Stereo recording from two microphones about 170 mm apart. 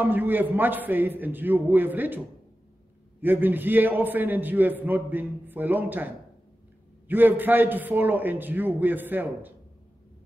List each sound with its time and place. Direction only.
0.0 s a man's voice: 10° right (ahead or behind)
7.1 s a man's voice: 10° right (ahead or behind)